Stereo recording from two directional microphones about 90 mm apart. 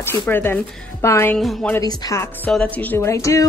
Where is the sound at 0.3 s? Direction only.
25° left (ahead or behind).